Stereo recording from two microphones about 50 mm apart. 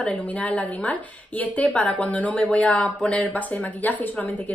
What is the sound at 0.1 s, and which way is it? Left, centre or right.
A woman's voice, left.